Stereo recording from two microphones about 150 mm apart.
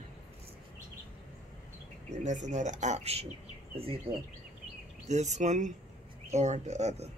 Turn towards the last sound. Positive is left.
turn(degrees=-45)  # may be behind; listen again after turning